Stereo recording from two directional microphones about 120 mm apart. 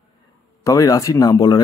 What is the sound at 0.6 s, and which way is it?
Speech, 30° left (ahead or behind).